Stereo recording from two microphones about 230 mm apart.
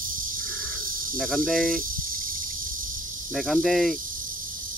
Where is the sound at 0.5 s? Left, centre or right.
Centre.